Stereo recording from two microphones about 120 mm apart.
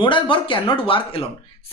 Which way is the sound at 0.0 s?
45° left (ahead or behind).